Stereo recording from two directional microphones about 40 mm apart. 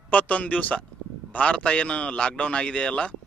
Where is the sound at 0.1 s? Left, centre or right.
Left.